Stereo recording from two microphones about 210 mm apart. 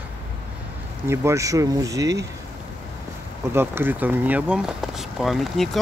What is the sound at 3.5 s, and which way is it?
Speech, 10° right (ahead or behind).